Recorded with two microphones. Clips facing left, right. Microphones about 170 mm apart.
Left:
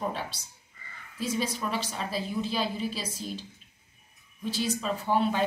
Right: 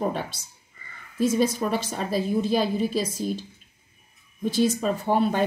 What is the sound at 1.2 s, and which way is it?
Speech, 45° right (ahead or behind).